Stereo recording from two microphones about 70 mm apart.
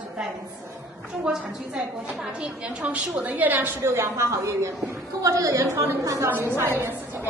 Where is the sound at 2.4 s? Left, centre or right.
Centre; by 6.3 s right.